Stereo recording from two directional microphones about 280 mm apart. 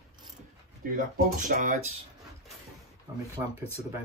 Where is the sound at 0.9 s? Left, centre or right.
Right.